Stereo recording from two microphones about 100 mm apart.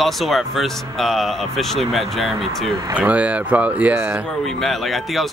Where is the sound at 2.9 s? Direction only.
15° right (ahead or behind).